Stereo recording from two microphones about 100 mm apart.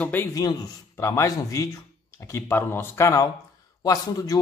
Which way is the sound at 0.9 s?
30° left (ahead or behind).